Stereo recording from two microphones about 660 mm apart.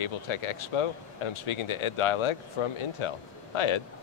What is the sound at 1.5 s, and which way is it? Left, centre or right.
Speech, left.